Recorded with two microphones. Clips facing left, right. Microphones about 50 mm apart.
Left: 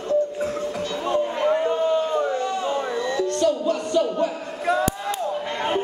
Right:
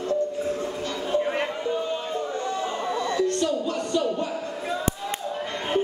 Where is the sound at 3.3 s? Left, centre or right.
Left.